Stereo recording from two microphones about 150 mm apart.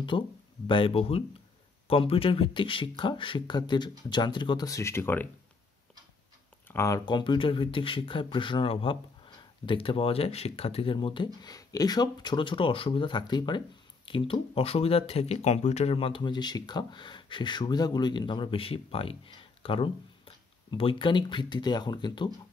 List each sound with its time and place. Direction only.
0.1 s speech: 35° left (ahead or behind); by 5.3 s 15° left (ahead or behind)
6.7 s speech: 20° left (ahead or behind)
7.1 s speech: 30° left (ahead or behind)